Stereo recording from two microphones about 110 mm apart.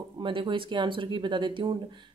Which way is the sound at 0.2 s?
45° right (ahead or behind).